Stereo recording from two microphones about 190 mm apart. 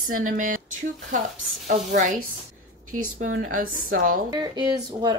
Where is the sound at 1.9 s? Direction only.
40° right (ahead or behind).